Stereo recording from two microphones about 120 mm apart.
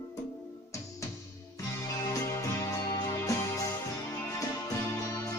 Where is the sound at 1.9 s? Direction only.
25° left (ahead or behind).